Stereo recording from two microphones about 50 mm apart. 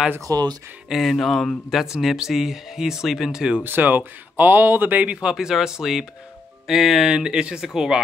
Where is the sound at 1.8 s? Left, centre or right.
Centre.